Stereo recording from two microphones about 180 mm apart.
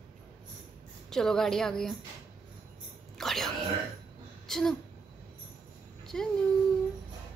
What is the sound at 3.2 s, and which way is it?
Music, centre (ahead or behind).